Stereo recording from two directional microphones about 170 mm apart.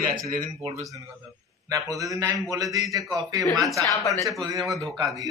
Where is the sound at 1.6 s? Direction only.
20° right (ahead or behind).